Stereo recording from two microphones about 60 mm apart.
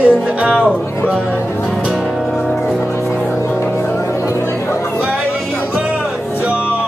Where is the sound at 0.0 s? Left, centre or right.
Right.